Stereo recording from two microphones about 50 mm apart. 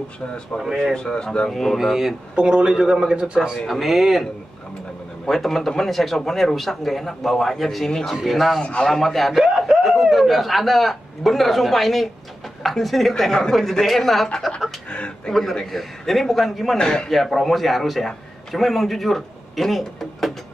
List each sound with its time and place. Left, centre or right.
0.9 s speech: centre
1.5 s speech: centre
2.3 s a man's voice: centre
9.3 s speech: centre
14.9 s speech: centre
15.5 s speech: centre
16.7 s speech: centre
17.1 s a man's voice: centre